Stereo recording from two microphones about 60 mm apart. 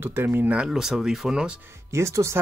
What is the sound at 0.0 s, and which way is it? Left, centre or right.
Speech, right.